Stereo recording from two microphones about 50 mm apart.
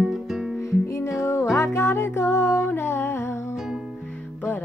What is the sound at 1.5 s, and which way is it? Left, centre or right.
Music, left.